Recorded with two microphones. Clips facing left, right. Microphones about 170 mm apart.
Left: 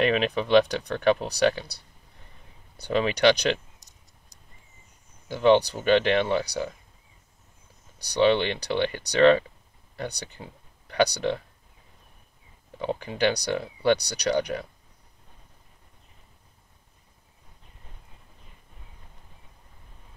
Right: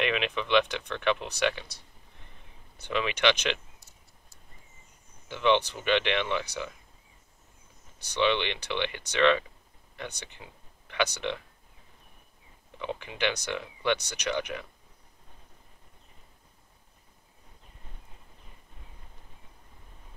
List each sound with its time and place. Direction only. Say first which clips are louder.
0.0 s speech: left 6 dB; 40° left (ahead or behind)
3.8 s clock: right 1 dB; 20° left (ahead or behind)
5.3 s speech: left 6 dB; 40° left (ahead or behind)
8.0 s speech: left 6 dB; 40° left (ahead or behind)
12.7 s speech: left 6 dB; 40° left (ahead or behind)